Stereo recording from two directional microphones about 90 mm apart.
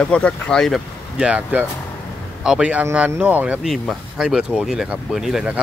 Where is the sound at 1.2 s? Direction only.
15° right (ahead or behind).